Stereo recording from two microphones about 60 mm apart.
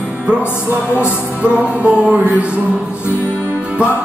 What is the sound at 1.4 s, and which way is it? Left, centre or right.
Music, right.